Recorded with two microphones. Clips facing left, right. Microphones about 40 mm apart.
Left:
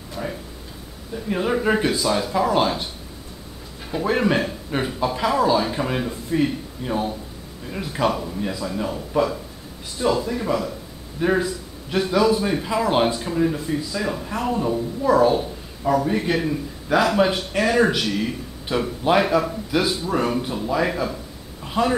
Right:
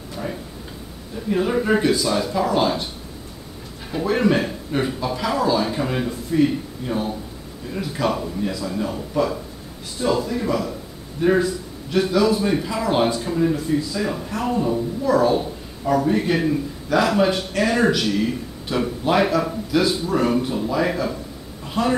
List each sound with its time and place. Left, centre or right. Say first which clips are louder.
0.1 s a sound: even; centre
1.3 s speech: right 1 dB; centre
4.0 s a man's voice: right 1 dB; centre
19.7 s speech: right 2 dB; centre
20.2 s a man's voice: right 2 dB; centre
21.8 s a man's voice: left 1 dB; centre